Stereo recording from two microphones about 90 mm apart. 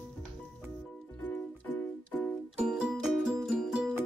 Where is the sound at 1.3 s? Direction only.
20° left (ahead or behind).